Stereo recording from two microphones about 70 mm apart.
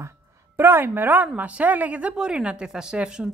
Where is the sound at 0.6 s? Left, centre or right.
Right.